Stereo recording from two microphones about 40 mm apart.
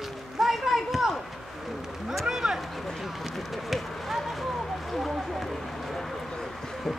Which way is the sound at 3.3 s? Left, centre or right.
Centre.